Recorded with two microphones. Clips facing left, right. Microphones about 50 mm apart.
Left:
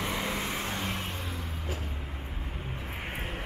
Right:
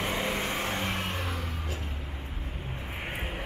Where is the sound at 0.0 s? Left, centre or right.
Centre.